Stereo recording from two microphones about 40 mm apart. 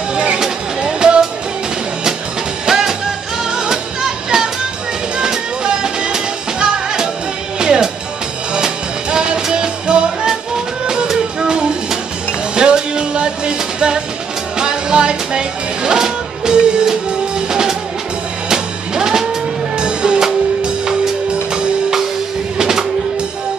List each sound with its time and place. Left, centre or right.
0.1 s music: right
2.6 s music: centre
22.6 s music: centre